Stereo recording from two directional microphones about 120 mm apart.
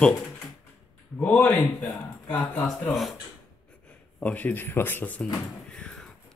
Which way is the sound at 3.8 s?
10° left (ahead or behind).